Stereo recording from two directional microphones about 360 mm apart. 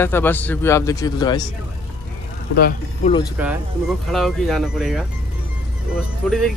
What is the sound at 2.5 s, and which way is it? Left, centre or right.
Speech, left.